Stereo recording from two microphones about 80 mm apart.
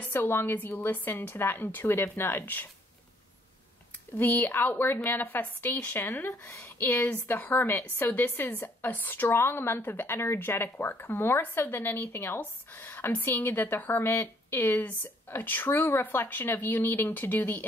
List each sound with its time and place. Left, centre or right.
0.0 s a woman's voice: left
4.2 s a woman's voice: left